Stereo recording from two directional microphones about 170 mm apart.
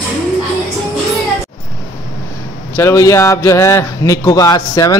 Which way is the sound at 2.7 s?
15° left (ahead or behind).